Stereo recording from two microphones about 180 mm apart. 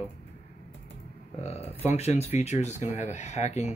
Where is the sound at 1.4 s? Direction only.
35° left (ahead or behind).